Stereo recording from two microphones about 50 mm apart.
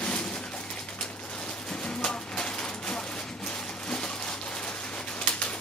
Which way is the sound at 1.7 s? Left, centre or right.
Centre.